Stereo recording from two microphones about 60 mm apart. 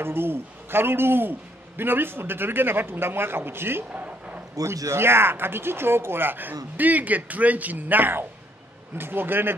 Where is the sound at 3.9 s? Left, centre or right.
Right.